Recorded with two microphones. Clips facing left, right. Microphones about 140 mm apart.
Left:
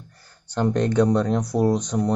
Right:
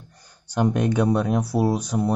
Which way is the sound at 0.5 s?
10° right (ahead or behind).